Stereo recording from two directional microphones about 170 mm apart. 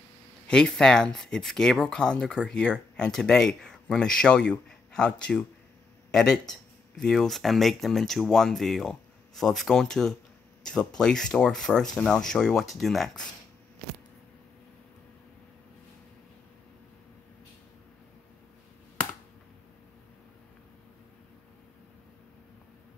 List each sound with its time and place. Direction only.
0.5 s speech: 5° left (ahead or behind)